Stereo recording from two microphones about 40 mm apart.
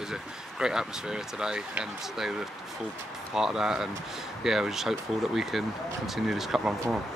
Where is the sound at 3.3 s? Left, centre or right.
Centre.